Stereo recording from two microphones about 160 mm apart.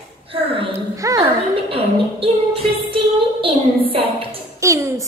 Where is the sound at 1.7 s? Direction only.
35° right (ahead or behind).